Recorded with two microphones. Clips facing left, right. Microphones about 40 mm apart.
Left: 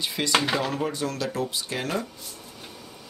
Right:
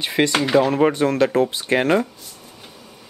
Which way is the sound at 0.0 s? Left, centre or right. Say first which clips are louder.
Right 9 dB; right.